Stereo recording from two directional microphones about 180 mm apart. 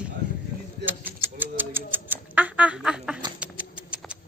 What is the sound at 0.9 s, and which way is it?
Typewriter, 10° right (ahead or behind).